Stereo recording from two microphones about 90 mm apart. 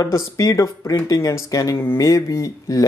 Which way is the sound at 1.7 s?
25° left (ahead or behind).